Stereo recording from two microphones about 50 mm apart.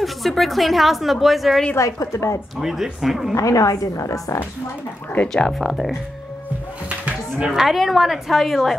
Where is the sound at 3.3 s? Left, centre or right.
Left.